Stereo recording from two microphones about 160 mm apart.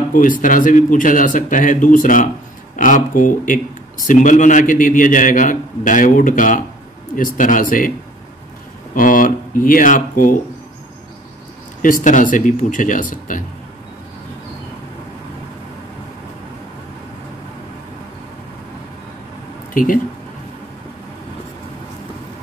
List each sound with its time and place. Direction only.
0.1 s a man's voice: 55° left (ahead or behind)
8.9 s a man's voice: 60° left (ahead or behind)
11.8 s a man's voice: 55° left (ahead or behind)
19.7 s speech: 60° left (ahead or behind)